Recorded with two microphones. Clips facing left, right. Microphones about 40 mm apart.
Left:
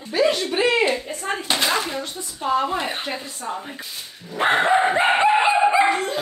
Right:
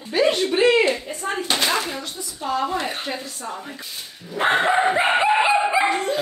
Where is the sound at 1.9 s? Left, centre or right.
Left.